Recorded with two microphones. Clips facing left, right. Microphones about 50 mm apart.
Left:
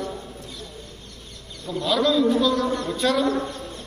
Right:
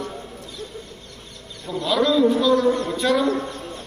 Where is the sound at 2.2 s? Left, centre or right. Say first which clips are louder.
Right 3 dB; right.